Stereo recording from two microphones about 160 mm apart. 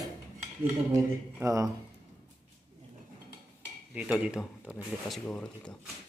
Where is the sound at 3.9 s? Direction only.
10° right (ahead or behind).